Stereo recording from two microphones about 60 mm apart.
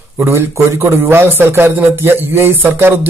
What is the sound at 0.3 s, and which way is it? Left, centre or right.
A man's voice, right.